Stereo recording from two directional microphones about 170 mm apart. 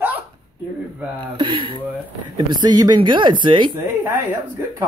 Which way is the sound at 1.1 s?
30° right (ahead or behind).